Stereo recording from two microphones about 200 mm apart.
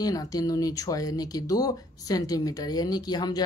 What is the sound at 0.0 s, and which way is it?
Speech, 20° left (ahead or behind).